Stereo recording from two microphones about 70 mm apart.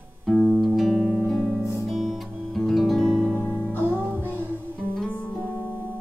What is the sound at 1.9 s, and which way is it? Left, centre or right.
Music, centre.